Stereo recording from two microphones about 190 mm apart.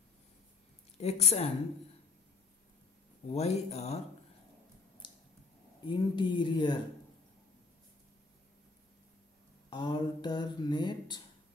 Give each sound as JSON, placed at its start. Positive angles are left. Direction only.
{"t": 0.9, "sound": "speech", "side_deg": 35}
{"t": 3.3, "sound": "speech", "side_deg": 35}
{"t": 5.9, "sound": "speech", "side_deg": 25}
{"t": 9.7, "sound": "speech", "side_deg": 25}